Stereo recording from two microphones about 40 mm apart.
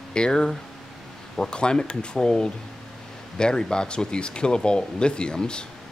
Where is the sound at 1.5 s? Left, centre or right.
Left.